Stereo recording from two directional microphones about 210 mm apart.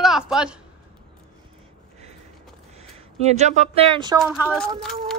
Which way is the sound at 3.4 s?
30° right (ahead or behind).